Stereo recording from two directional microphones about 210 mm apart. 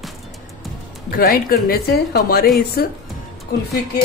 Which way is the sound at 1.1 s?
45° left (ahead or behind).